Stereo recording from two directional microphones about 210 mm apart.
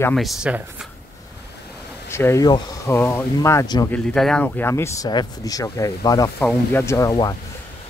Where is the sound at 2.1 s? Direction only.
15° left (ahead or behind).